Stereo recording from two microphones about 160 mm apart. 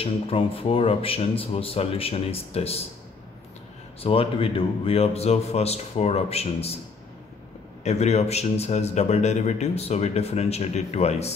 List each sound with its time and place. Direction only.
0.0 s speech: 35° left (ahead or behind)
4.0 s speech: 35° left (ahead or behind)
7.8 s speech: 45° left (ahead or behind)